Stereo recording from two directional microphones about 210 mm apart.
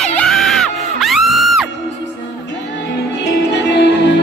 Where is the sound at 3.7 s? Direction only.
55° left (ahead or behind).